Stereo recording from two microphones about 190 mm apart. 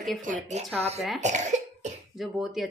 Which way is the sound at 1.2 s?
40° right (ahead or behind).